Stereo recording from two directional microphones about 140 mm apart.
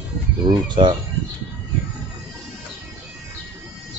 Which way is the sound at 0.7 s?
35° right (ahead or behind).